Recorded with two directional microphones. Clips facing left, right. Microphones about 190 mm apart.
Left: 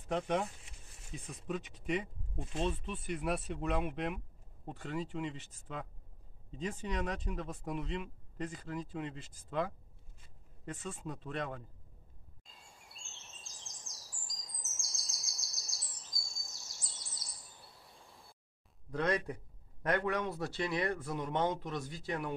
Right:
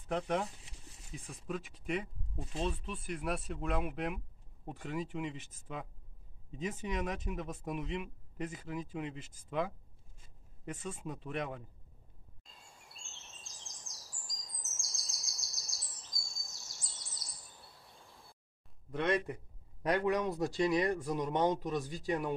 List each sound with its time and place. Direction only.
0.1 s speech: centre (ahead or behind)
12.4 s bird vocalization: centre (ahead or behind)
18.9 s speech: centre (ahead or behind)
19.8 s speech: 15° right (ahead or behind)